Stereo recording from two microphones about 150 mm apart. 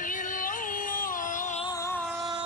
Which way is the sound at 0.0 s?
60° left (ahead or behind).